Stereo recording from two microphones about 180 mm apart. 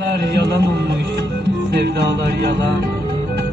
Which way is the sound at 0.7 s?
70° right (ahead or behind).